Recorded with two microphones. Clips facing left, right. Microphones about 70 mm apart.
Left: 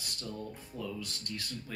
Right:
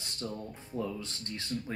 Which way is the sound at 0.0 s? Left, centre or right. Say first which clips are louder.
Right 2 dB; right.